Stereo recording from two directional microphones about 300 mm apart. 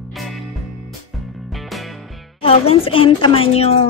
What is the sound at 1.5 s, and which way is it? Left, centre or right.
Music, centre.